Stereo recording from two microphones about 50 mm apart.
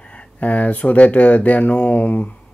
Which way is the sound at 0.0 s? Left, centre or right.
Left.